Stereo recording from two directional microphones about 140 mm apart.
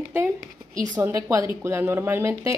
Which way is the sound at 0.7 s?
65° right (ahead or behind).